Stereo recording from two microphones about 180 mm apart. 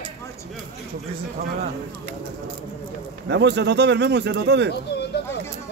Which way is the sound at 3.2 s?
70° right (ahead or behind).